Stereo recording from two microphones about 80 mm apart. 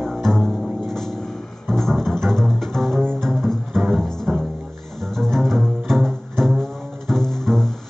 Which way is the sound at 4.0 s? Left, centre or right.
Centre.